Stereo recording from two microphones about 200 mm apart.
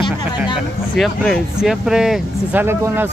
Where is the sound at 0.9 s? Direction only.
Centre (ahead or behind).